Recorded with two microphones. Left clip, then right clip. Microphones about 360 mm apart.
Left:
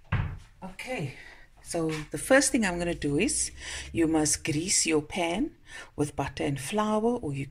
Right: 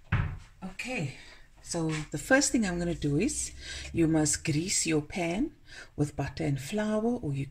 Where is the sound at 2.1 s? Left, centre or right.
Centre.